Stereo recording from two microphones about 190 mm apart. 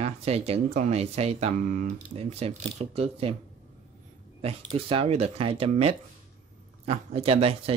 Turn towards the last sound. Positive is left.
turn(degrees=-30)  # may be behind; listen again after turning